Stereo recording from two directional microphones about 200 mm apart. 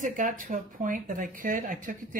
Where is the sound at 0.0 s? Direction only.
40° right (ahead or behind).